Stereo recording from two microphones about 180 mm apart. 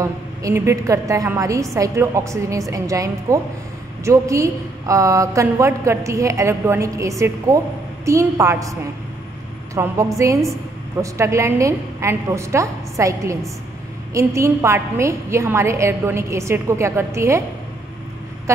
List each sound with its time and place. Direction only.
0.0 s a woman's voice: 15° right (ahead or behind)
9.8 s a woman's voice: 15° right (ahead or behind)